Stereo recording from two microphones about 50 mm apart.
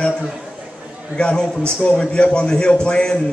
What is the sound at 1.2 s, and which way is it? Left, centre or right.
A man's voice, centre.